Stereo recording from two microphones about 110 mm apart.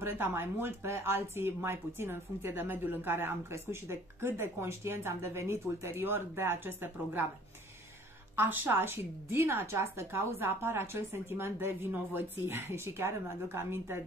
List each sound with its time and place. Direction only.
0.0 s speech: 20° right (ahead or behind)
8.4 s speech: 20° right (ahead or behind)